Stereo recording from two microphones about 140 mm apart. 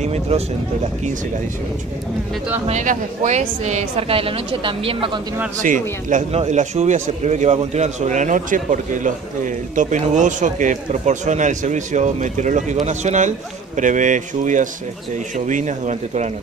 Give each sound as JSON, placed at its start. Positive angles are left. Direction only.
{"t": 0.0, "sound": "speech", "side_deg": -50}
{"t": 2.7, "sound": "speech", "side_deg": -60}
{"t": 5.6, "sound": "a man's voice", "side_deg": -65}